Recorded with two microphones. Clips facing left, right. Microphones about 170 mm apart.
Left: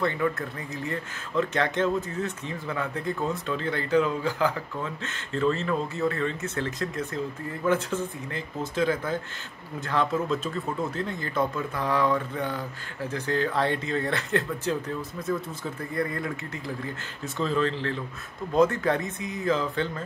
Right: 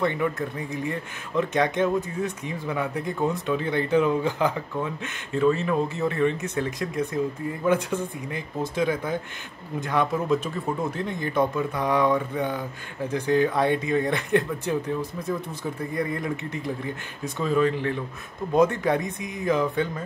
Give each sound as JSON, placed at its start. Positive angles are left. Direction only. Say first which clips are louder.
{"t": 0.0, "sound": "speech", "louder": "right 2 dB", "side_deg": -20}